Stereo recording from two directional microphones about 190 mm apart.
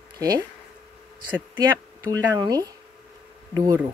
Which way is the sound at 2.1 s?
20° right (ahead or behind).